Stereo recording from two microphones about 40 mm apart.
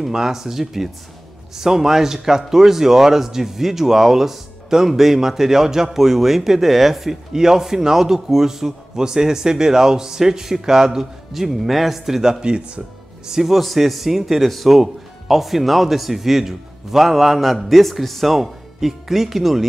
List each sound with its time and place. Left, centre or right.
0.0 s speech: centre
12.4 s speech: right
13.3 s speech: centre